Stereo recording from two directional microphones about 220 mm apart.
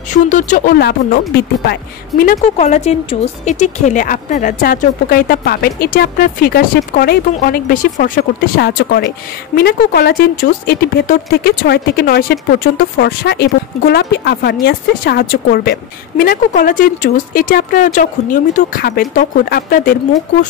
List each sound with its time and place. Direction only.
0.3 s speech: 35° left (ahead or behind)